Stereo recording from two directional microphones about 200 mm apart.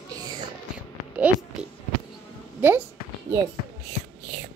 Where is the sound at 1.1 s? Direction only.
5° right (ahead or behind).